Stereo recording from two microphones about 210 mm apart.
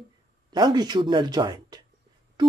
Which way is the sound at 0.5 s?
20° right (ahead or behind).